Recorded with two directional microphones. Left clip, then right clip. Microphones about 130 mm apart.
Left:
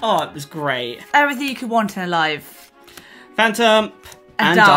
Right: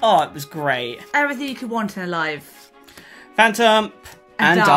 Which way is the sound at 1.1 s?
55° left (ahead or behind).